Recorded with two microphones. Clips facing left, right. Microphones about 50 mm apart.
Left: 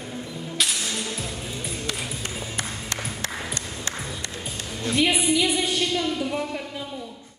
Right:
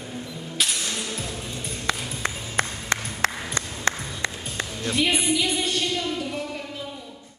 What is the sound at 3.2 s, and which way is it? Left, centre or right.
Ping, right.